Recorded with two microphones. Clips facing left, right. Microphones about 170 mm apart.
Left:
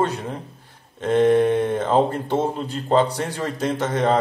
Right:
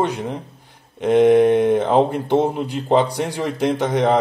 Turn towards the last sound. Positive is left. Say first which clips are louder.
# right 3 dB
turn(degrees=-15)  # may be behind; listen again after turning